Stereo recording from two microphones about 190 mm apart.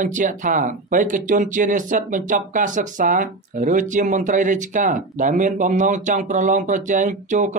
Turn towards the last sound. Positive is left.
turn(degrees=-40)  # may be behind; listen again after turning